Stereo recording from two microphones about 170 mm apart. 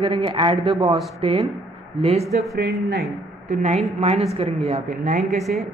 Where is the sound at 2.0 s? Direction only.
40° right (ahead or behind).